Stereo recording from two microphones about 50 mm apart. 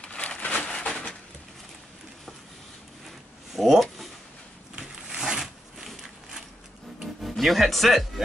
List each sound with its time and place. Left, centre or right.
0.0 s a sound: left
3.5 s speech: centre
5.1 s zipper: centre
7.2 s speech: centre